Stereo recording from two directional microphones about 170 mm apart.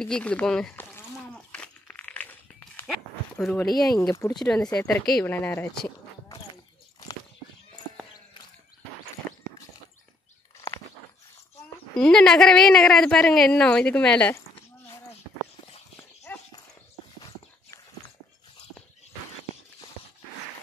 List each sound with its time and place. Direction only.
0.0 s a sound: 5° left (ahead or behind)
3.7 s speech: 20° left (ahead or behind)
4.4 s a woman's voice: 5° left (ahead or behind)
12.0 s a woman's voice: 5° left (ahead or behind)
16.3 s horse: 10° left (ahead or behind)
17.2 s horse: 20° left (ahead or behind)